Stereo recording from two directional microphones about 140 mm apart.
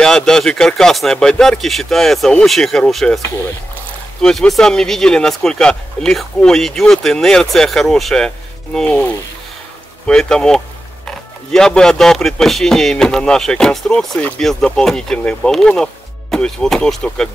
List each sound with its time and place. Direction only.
0.0 s speech: 5° left (ahead or behind)
4.2 s speech: 5° left (ahead or behind)